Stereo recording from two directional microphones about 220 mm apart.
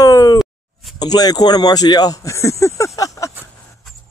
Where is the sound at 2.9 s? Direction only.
15° left (ahead or behind).